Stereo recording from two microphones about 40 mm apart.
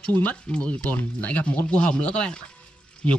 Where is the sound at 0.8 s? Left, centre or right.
Left.